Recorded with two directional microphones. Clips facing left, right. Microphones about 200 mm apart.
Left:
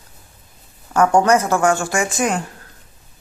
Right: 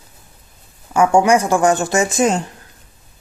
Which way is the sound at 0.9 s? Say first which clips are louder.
Right 1 dB; 10° right (ahead or behind).